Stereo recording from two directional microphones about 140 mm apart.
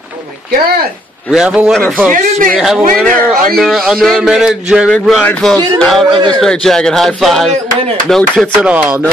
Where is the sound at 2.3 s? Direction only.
70° right (ahead or behind).